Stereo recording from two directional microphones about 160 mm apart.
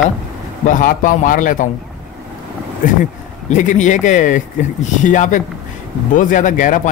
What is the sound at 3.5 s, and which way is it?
Speech, 50° left (ahead or behind).